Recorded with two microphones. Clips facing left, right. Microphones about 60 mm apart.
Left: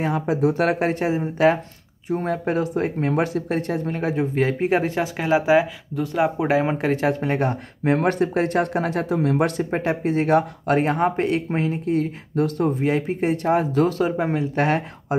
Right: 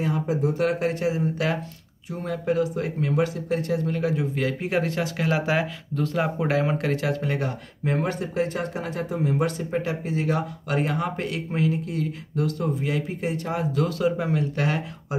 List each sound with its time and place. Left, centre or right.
0.3 s speech: left
0.7 s speech: left
7.8 s speech: left
9.1 s speech: left
9.6 s speech: left